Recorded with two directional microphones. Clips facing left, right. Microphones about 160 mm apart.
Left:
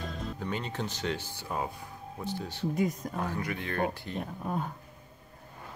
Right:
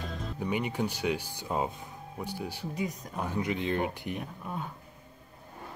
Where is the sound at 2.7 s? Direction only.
50° left (ahead or behind).